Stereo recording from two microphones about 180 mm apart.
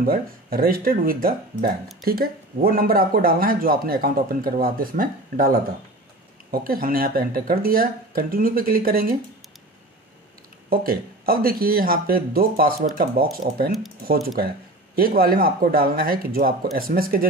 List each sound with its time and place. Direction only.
0.0 s speech: 55° right (ahead or behind)
10.7 s speech: 55° right (ahead or behind)